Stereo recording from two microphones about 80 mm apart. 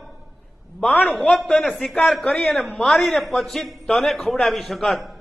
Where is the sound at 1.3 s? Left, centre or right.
Centre.